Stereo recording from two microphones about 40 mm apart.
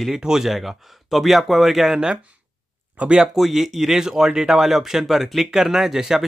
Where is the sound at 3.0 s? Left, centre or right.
Right.